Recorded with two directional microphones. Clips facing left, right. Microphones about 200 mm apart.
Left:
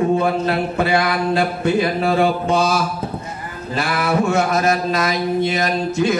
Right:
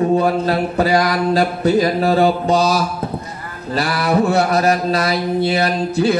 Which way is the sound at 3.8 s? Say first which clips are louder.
Right 2 dB; 35° right (ahead or behind).